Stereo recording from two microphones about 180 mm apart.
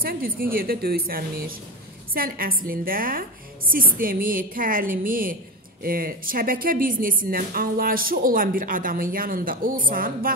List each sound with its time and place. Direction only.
0.0 s a woman's voice: 55° right (ahead or behind)